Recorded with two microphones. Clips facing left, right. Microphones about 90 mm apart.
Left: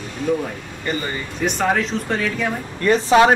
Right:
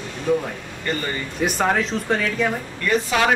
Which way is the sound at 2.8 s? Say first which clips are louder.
Left 7 dB; 30° left (ahead or behind).